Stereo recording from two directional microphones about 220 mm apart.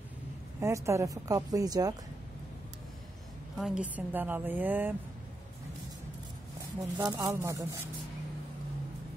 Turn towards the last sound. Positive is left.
turn(degrees=-10)  # may be behind; listen again after turning